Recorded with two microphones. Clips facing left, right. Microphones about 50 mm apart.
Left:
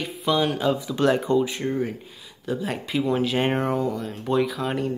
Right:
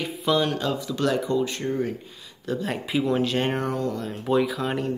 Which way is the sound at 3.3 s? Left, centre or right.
Centre.